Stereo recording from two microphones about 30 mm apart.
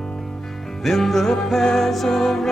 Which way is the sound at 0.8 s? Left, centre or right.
Centre.